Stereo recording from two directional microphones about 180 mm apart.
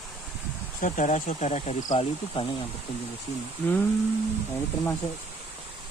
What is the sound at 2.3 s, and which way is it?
Speech, 25° left (ahead or behind).